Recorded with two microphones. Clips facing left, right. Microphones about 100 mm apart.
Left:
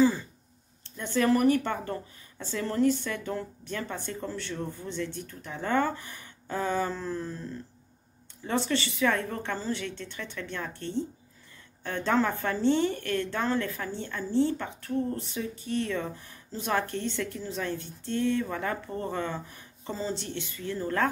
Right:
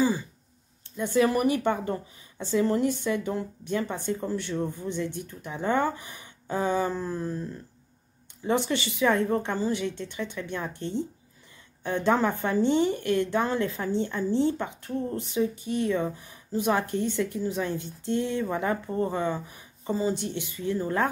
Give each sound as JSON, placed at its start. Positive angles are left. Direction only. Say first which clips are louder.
{"t": 0.8, "sound": "a woman's voice", "louder": "right 2 dB", "side_deg": -10}
{"t": 8.5, "sound": "a woman's voice", "louder": "right 3 dB", "side_deg": -15}